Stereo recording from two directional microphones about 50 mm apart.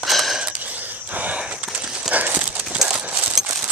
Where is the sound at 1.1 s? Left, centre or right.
Right.